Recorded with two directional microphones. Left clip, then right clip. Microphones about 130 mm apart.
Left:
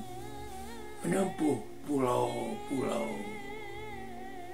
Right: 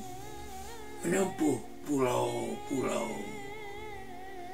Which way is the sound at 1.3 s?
Centre (ahead or behind).